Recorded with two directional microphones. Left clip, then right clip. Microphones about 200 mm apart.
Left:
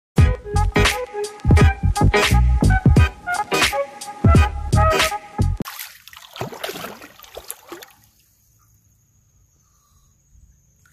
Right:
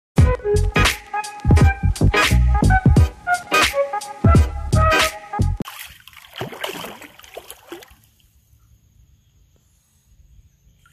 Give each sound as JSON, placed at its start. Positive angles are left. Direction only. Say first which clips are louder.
{"t": 0.1, "sound": "music", "louder": "right 5 dB", "side_deg": 0}
{"t": 5.7, "sound": "music", "louder": "left 1 dB", "side_deg": 15}
{"t": 6.3, "sound": "rowboat", "louder": "even", "side_deg": 5}
{"t": 6.6, "sound": "boat", "louder": "right 1 dB", "side_deg": -5}